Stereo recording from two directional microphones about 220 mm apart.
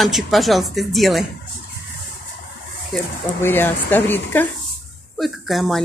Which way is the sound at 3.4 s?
10° left (ahead or behind).